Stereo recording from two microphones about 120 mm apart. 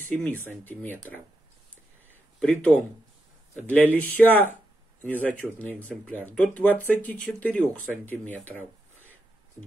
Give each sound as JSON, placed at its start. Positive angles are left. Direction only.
{"t": 0.1, "sound": "speech", "side_deg": 15}
{"t": 2.4, "sound": "speech", "side_deg": 5}